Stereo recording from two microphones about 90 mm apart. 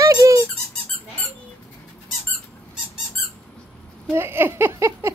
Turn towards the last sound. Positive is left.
turn(degrees=-30)  # may be behind; listen again after turning